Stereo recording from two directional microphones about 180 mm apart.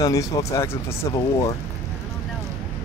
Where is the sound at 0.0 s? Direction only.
20° left (ahead or behind).